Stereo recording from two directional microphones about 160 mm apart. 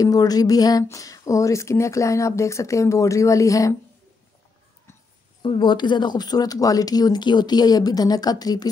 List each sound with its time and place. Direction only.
0.0 s speech: 25° left (ahead or behind)
5.4 s speech: 30° left (ahead or behind)